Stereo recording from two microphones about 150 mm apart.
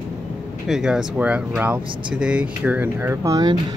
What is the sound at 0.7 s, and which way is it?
Speech, 5° right (ahead or behind).